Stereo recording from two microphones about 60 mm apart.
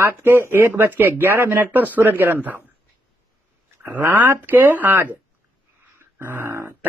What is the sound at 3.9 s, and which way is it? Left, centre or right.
Speech, right.